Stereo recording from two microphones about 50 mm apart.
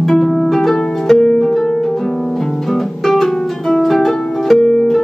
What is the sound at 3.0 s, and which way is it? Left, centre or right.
Harp, centre.